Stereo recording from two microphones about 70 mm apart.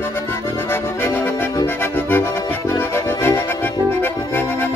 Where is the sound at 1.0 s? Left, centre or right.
Left.